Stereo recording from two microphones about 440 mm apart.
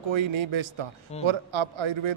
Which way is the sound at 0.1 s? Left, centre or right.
Right.